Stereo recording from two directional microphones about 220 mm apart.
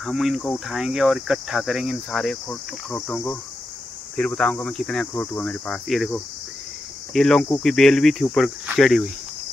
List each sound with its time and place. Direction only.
0.0 s speech: centre (ahead or behind)